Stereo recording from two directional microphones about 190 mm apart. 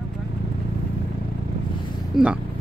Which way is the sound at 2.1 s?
Centre (ahead or behind).